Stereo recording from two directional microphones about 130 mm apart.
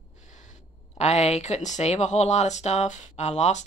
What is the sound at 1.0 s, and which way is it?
Speech, 60° left (ahead or behind).